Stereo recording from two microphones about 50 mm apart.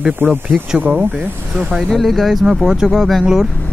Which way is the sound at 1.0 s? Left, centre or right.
Right.